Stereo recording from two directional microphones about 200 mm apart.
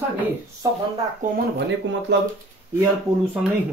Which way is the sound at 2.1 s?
60° right (ahead or behind).